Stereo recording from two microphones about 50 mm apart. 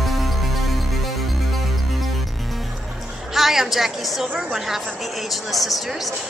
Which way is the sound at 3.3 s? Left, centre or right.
Centre.